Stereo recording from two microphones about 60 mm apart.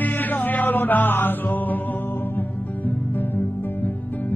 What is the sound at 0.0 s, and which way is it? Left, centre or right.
Music, left.